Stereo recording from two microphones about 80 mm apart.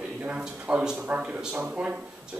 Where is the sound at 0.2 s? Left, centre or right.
Centre.